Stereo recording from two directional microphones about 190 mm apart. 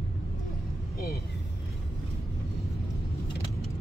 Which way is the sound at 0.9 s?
55° left (ahead or behind).